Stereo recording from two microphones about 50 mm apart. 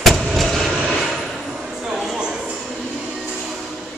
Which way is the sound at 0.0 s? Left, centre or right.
Centre.